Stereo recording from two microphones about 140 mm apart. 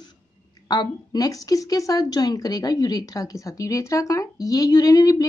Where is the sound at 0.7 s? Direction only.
30° left (ahead or behind).